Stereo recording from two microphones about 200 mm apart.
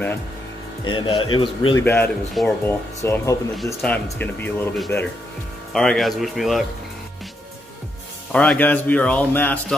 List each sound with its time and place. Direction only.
0.8 s a man's voice: 25° left (ahead or behind)
1.9 s a man's voice: 5° left (ahead or behind)
8.3 s a man's voice: 5° left (ahead or behind)